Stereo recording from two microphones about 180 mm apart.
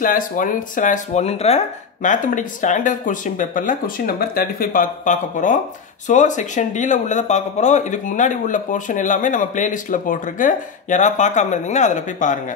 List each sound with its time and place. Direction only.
0.0 s speech: 50° left (ahead or behind)